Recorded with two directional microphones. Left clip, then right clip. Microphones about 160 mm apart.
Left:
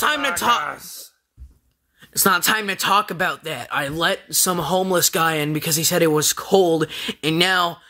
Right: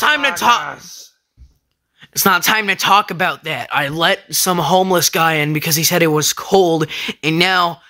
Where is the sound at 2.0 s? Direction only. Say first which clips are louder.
Right 4 dB; 10° right (ahead or behind).